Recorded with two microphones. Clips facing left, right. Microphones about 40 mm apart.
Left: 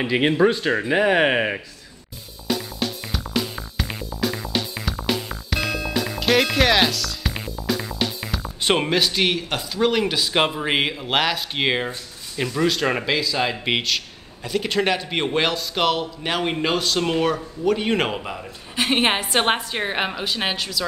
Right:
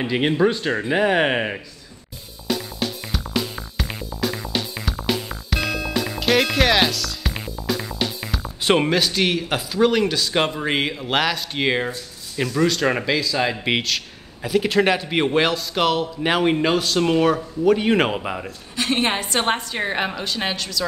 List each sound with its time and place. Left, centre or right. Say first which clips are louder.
0.0 s a woman's voice: left 1 dB; centre
2.4 s music: even; centre
9.5 s a woman's voice: right 3 dB; centre
16.2 s speech: right 5 dB; centre
18.2 s a man's voice: right 4 dB; centre
18.8 s a woman's voice: left 1 dB; left